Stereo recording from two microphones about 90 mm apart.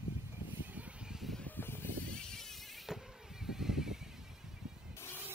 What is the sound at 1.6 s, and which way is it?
Sheep, 25° left (ahead or behind).